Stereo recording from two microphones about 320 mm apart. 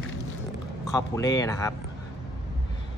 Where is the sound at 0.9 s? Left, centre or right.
Centre.